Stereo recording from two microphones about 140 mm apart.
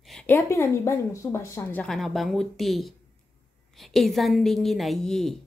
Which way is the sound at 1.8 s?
Centre (ahead or behind).